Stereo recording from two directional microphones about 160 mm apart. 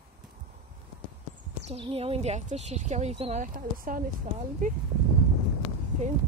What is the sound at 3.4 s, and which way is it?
Speech, 60° right (ahead or behind).